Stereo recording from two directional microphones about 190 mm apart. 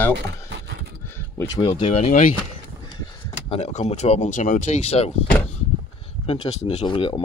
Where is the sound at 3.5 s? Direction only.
35° left (ahead or behind).